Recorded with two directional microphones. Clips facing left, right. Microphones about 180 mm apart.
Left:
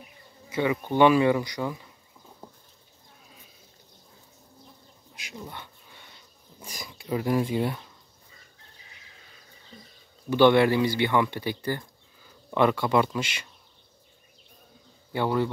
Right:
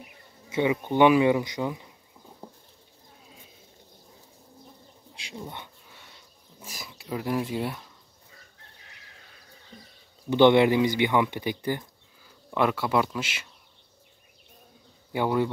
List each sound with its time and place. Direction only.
0.5 s speech: 20° right (ahead or behind)
5.1 s bird: 30° right (ahead or behind)
6.6 s speech: 5° right (ahead or behind)
10.3 s speech: 20° right (ahead or behind)
12.4 s speech: 5° right (ahead or behind)
15.1 s speech: 15° right (ahead or behind)